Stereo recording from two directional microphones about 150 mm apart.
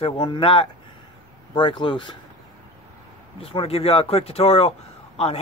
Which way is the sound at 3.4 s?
40° left (ahead or behind).